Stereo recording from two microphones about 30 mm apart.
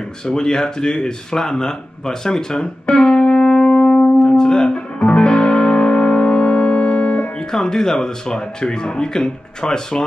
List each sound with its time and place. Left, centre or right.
0.2 s speech: left
1.5 s music: centre; by 4.1 s left
4.2 s music: left
5.1 s music: left
7.3 s speech: left